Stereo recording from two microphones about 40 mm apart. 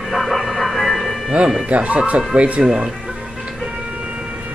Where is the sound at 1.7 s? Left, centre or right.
Right.